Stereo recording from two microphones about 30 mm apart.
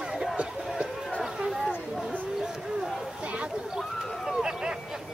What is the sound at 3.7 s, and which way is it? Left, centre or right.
Run, centre.